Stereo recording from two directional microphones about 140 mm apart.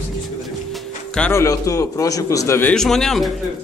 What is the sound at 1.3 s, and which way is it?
A man's voice, 20° left (ahead or behind).